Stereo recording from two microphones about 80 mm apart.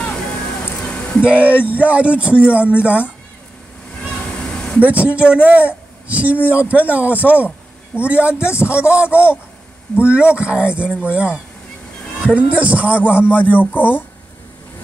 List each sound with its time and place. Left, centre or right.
0.8 s music: centre
1.2 s speech: centre
4.0 s vehicle: centre
4.8 s a woman's voice: centre
8.4 s speech: left
9.1 s speech: centre
13.3 s speech: left